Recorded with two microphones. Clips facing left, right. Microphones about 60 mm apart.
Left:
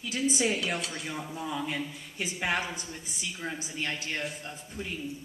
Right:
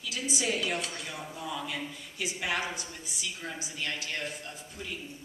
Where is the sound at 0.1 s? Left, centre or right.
Left.